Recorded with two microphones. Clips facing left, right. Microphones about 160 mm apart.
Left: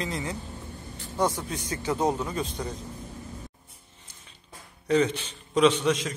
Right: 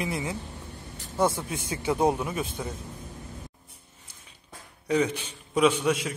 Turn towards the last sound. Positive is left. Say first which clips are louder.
# left 1 dB
turn(degrees=-10)  # may be behind; listen again after turning